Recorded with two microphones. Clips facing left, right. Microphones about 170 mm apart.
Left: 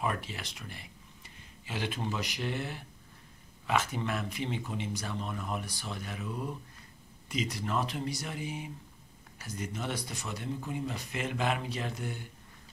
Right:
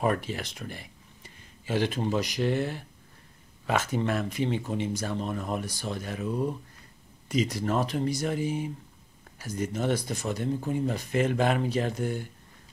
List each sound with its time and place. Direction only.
0.0 s speech: 45° right (ahead or behind)
7.2 s speech: 40° right (ahead or behind)